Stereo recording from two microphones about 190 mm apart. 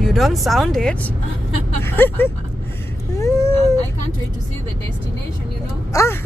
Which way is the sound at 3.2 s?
15° left (ahead or behind).